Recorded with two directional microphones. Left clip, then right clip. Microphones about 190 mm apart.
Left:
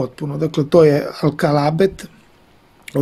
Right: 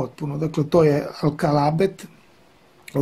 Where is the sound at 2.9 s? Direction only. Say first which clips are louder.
Left 4 dB; 25° left (ahead or behind).